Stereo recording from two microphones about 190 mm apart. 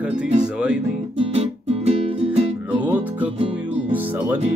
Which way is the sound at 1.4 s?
35° right (ahead or behind).